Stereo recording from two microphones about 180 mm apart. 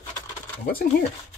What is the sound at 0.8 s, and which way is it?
Speech, 60° left (ahead or behind).